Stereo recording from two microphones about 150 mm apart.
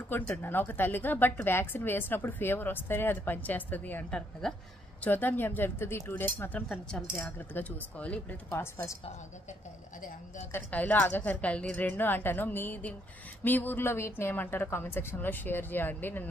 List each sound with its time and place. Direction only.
0.1 s a woman's voice: 15° left (ahead or behind)
6.7 s a woman's voice: 5° left (ahead or behind)
10.5 s a woman's voice: 10° left (ahead or behind)